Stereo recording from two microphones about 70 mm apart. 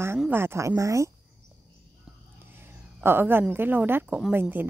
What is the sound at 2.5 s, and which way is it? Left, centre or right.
Speech, right.